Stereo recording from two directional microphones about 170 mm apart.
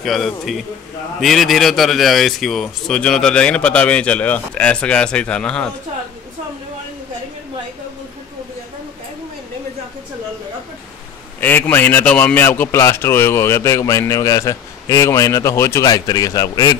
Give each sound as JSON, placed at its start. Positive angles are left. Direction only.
{"t": 0.0, "sound": "a man's voice", "side_deg": 0}
{"t": 11.4, "sound": "a man's voice", "side_deg": 10}